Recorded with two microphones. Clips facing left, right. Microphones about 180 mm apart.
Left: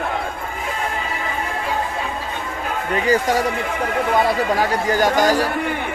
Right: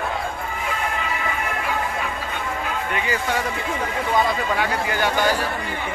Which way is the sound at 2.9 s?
40° left (ahead or behind).